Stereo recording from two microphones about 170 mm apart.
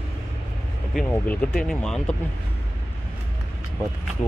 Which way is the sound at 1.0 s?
10° left (ahead or behind).